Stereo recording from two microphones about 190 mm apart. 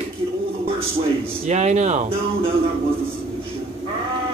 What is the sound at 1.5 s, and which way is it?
Speech, 40° right (ahead or behind).